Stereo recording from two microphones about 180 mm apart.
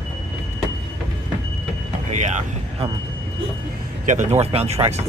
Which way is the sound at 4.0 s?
45° right (ahead or behind).